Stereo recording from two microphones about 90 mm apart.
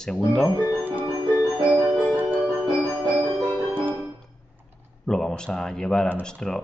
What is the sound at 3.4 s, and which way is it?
Music, 25° right (ahead or behind).